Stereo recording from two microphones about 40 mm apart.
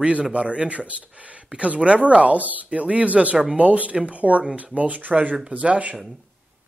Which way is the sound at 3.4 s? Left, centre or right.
Right.